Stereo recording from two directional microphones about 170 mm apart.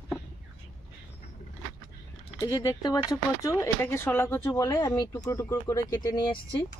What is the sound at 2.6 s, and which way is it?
Speech, 20° left (ahead or behind).